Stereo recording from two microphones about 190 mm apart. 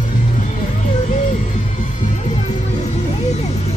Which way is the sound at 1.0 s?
40° left (ahead or behind).